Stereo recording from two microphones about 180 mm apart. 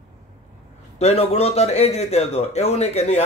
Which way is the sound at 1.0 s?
35° left (ahead or behind).